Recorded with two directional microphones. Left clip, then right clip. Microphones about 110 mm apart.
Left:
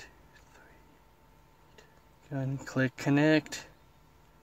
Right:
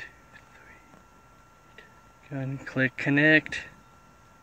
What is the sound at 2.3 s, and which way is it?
Speech, 25° left (ahead or behind).